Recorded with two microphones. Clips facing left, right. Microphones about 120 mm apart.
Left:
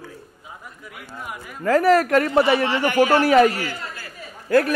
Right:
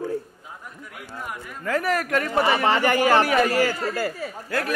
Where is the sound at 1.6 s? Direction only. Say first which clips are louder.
Left 8 dB; 35° left (ahead or behind).